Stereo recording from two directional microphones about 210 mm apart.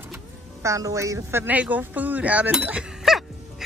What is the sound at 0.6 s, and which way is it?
Speech, 15° right (ahead or behind).